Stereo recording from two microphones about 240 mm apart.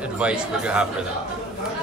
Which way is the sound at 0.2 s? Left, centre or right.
Centre.